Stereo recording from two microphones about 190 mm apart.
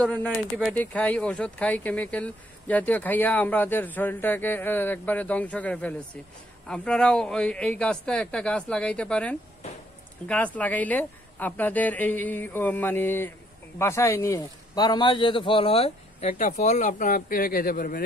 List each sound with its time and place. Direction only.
0.0 s a man's voice: 5° left (ahead or behind); by 18.0 s 45° left (ahead or behind)